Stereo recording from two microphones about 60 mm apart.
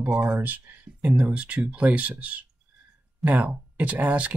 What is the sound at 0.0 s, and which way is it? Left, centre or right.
Speech, right.